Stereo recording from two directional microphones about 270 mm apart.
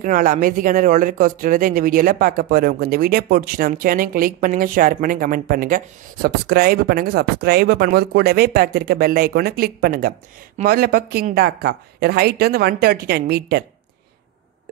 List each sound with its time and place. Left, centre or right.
0.0 s speech: right